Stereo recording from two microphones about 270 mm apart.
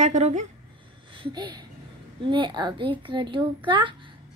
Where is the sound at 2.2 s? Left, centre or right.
Centre.